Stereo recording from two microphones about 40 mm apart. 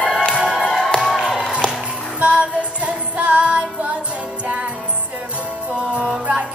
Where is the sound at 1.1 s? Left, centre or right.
Centre.